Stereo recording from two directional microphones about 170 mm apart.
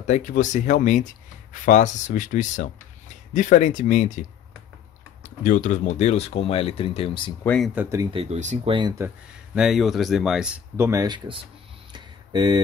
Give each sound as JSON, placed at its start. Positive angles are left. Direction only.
{"t": 0.0, "sound": "speech", "side_deg": 45}
{"t": 5.2, "sound": "speech", "side_deg": 50}
{"t": 7.4, "sound": "speech", "side_deg": 5}
{"t": 7.7, "sound": "speech", "side_deg": -10}
{"t": 8.0, "sound": "speech", "side_deg": -35}
{"t": 8.6, "sound": "speech", "side_deg": -25}
{"t": 9.6, "sound": "speech", "side_deg": 0}
{"t": 10.8, "sound": "speech", "side_deg": -20}
{"t": 11.9, "sound": "a sound", "side_deg": -25}